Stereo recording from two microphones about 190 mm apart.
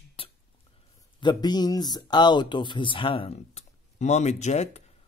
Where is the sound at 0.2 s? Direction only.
30° left (ahead or behind).